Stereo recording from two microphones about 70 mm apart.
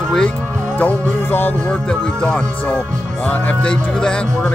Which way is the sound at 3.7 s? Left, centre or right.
Centre.